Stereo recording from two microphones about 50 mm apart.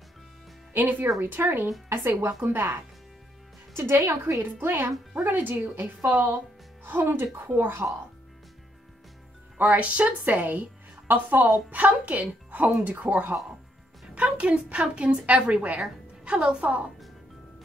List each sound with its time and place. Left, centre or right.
0.7 s a woman's voice: right
9.8 s a woman's voice: right